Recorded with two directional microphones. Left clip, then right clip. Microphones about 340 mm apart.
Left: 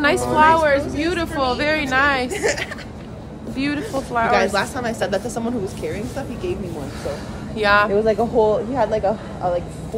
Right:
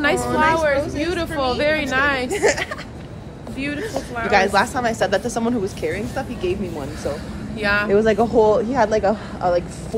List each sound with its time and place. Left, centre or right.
0.0 s speech: centre
2.3 s a woman's voice: right
3.5 s speech: centre
4.3 s a woman's voice: right
7.5 s speech: centre
7.9 s a woman's voice: right